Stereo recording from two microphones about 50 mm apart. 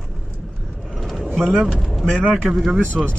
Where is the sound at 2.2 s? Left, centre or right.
Right.